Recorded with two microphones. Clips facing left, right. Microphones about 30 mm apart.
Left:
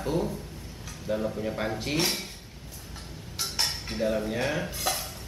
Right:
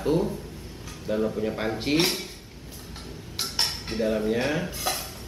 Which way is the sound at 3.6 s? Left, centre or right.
Right.